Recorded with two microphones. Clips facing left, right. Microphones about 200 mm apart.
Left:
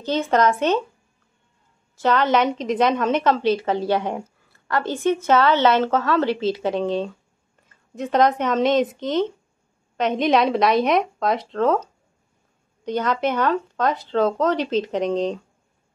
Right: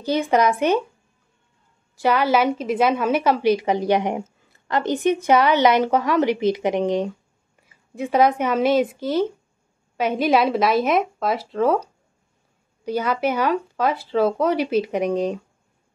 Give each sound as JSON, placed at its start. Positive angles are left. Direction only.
{"t": 0.0, "sound": "a woman's voice", "side_deg": -10}
{"t": 2.0, "sound": "a woman's voice", "side_deg": -10}